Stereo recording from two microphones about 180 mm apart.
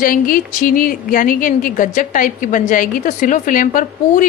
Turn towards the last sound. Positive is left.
turn(degrees=50)  # may be behind; listen again after turning